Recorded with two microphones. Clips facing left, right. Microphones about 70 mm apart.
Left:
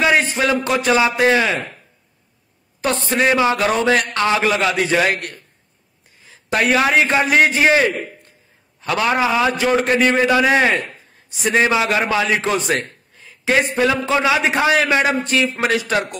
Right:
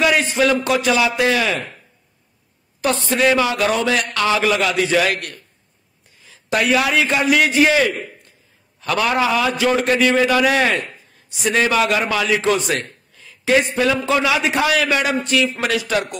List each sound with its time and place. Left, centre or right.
0.0 s a man's voice: left
2.8 s a man's voice: left
9.1 s a man's voice: left